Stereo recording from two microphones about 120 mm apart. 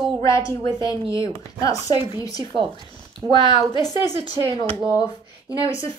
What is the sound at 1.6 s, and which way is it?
Speech, 30° left (ahead or behind).